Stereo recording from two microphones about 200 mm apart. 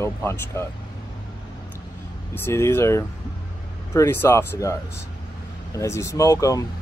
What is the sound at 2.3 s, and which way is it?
Speech, 10° left (ahead or behind).